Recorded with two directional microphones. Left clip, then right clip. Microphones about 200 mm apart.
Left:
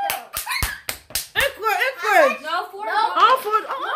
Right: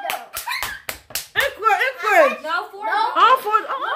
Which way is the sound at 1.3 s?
Centre (ahead or behind).